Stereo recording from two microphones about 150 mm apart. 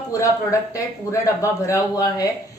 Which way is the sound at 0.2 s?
20° left (ahead or behind).